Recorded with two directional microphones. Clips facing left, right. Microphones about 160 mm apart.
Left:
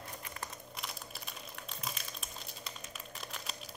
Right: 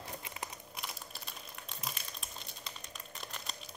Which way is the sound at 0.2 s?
15° right (ahead or behind).